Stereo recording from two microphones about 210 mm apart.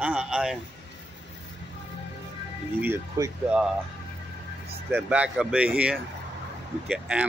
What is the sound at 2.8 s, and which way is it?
Speech, 10° right (ahead or behind).